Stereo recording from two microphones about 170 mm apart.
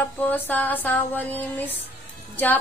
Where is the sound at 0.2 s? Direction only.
10° left (ahead or behind).